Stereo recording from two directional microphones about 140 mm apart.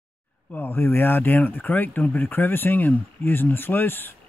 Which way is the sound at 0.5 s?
15° left (ahead or behind).